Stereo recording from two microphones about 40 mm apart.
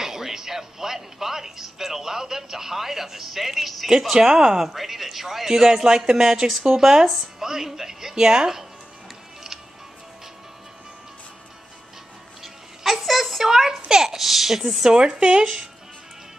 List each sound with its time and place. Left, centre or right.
0.0 s a woman's voice: centre
4.1 s a man's voice: centre
4.6 s a man's voice: centre
12.8 s a sound: centre
14.9 s a man's voice: right